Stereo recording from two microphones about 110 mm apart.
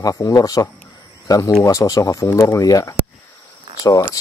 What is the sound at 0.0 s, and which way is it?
Speech, 30° left (ahead or behind).